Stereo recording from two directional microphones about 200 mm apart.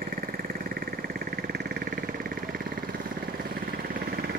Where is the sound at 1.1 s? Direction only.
50° right (ahead or behind).